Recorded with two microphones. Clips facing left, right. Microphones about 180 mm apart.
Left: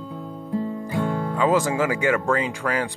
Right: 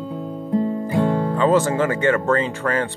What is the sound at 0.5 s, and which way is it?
Music, 50° right (ahead or behind).